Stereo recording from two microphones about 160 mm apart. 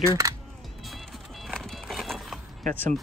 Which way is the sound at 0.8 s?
Centre (ahead or behind).